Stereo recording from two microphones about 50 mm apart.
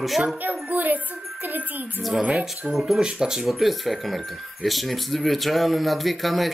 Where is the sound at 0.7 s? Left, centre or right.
Right.